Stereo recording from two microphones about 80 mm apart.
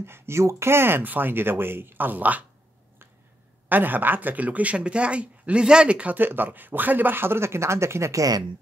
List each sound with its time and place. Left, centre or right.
0.0 s speech: right
3.6 s speech: right